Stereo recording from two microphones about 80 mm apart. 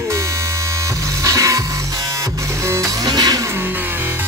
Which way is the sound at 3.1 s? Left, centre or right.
Right.